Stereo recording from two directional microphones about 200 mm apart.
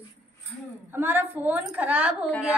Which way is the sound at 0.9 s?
10° right (ahead or behind).